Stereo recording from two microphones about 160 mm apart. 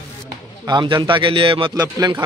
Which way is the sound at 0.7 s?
30° right (ahead or behind).